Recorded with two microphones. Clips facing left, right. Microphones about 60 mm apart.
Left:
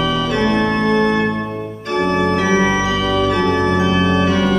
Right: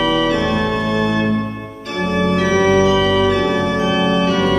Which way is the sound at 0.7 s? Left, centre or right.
Left.